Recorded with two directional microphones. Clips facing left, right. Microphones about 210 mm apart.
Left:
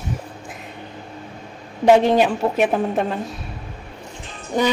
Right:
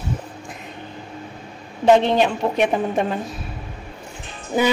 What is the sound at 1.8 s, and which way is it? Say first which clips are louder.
Speech: left 1 dB; 10° left (ahead or behind).